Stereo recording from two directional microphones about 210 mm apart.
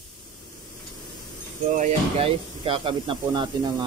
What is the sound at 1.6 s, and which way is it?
Speech, 35° right (ahead or behind).